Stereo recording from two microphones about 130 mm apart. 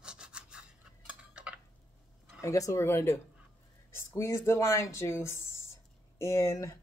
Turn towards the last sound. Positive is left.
turn(degrees=25)  # may be behind; listen again after turning